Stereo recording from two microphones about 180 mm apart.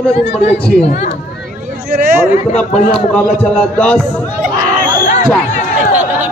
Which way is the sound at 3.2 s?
5° left (ahead or behind).